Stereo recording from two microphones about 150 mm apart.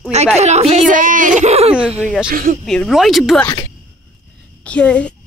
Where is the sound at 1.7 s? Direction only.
5° right (ahead or behind).